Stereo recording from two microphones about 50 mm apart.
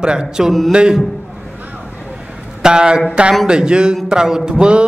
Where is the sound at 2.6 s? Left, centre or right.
Centre.